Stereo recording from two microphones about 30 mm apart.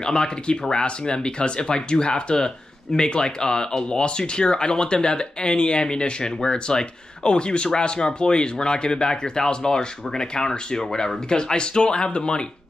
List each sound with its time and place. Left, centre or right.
0.0 s speech: left